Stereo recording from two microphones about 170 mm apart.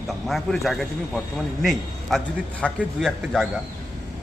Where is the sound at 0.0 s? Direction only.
Centre (ahead or behind).